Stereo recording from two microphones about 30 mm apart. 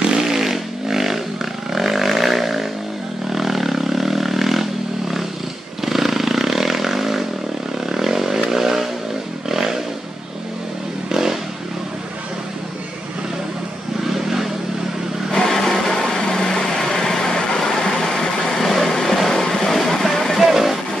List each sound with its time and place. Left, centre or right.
0.2 s vehicle: centre
5.8 s vehicle: centre
8.5 s chainsaw: centre
9.5 s a sound: centre
11.1 s vehicle: centre
15.3 s vehicle: centre
15.9 s a sound: left
16.2 s vehicle: centre
17.6 s vehicle: centre
17.8 s a sound: left
18.9 s a sound: centre
19.1 s music: centre
20.3 s music: centre